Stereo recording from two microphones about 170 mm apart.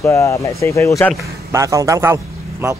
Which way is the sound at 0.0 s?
15° left (ahead or behind).